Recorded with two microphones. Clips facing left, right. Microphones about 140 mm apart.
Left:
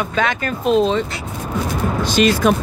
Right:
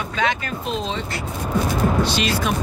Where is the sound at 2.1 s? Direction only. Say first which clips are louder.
Left 8 dB; 50° left (ahead or behind).